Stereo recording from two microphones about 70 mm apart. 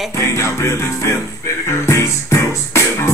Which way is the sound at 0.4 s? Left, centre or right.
Left.